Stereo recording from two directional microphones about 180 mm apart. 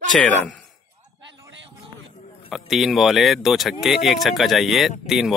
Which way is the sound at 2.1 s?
40° left (ahead or behind).